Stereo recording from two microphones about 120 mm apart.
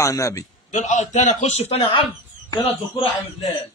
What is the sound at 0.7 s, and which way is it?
A man's voice, 90° left.